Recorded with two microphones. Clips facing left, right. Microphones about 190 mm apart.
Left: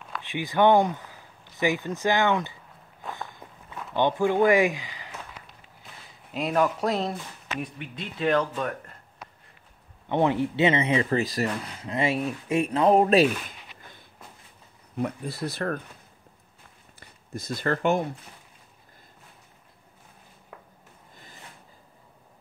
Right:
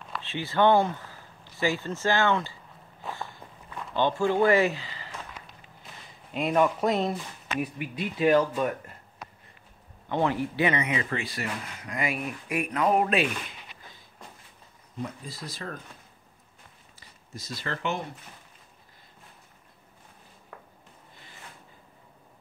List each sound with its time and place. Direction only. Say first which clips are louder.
0.2 s speech: left 2 dB; 15° left (ahead or behind)
3.0 s walk: even; centre (ahead or behind)
3.9 s speech: left 2 dB; 15° left (ahead or behind)
6.3 s speech: even; centre (ahead or behind)
10.0 s speech: left 3 dB; 20° left (ahead or behind)
15.0 s speech: left 7 dB; 65° left (ahead or behind)
17.0 s speech: left 7 dB; 55° left (ahead or behind)